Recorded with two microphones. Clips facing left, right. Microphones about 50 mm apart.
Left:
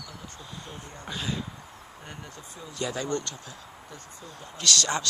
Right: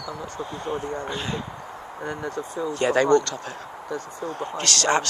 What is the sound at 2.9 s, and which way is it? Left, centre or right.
Speech, right.